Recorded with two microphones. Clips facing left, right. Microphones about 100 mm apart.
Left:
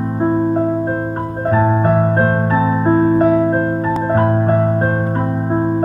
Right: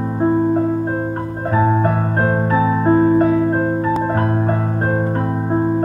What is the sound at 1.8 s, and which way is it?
Keyboard, 15° left (ahead or behind).